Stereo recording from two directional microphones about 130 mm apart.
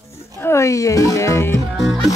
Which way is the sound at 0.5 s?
20° left (ahead or behind).